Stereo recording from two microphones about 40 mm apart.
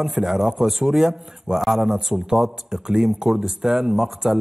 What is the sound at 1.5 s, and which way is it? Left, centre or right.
A man's voice, centre.